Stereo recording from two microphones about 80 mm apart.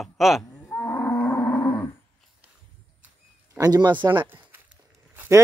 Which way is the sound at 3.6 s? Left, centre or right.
Right.